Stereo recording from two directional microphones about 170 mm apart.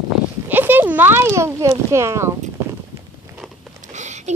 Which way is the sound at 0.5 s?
10° right (ahead or behind).